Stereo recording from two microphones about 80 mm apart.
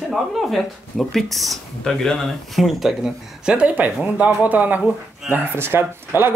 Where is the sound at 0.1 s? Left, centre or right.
Centre.